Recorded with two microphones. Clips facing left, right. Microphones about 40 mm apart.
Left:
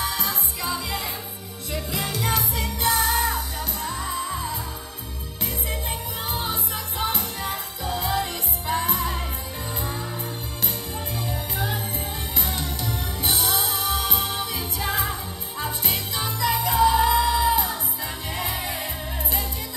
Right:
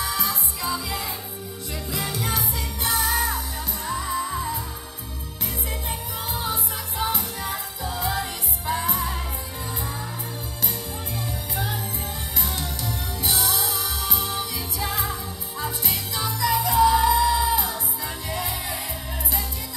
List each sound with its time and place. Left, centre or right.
0.0 s music: left
6.3 s music: left
12.4 s music: left